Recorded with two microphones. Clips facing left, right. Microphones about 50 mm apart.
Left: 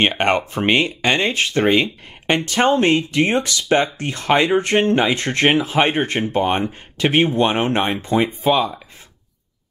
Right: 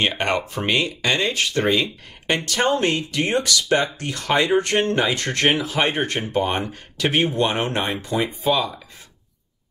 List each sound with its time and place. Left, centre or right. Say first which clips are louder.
0.2 s speech: left 5 dB; left